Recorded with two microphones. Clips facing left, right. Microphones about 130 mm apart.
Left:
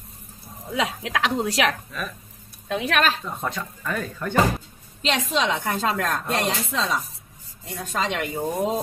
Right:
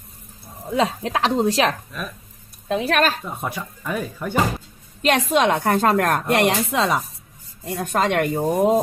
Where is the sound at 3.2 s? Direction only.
10° right (ahead or behind).